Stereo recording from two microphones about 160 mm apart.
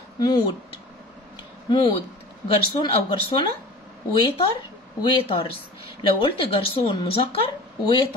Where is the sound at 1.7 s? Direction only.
30° left (ahead or behind).